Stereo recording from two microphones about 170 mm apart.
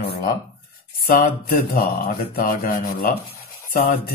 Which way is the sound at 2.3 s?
55° left (ahead or behind).